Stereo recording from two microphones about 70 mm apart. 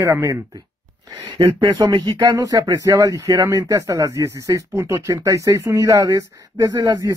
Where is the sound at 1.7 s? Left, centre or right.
Right.